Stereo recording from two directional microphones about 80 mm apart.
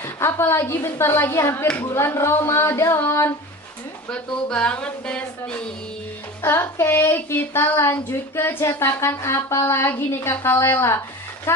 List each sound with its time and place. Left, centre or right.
0.0 s speech: left
3.0 s a sound: left
4.1 s speech: centre
6.4 s speech: left